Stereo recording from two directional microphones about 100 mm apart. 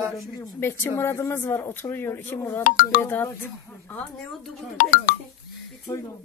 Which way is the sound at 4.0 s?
5° left (ahead or behind).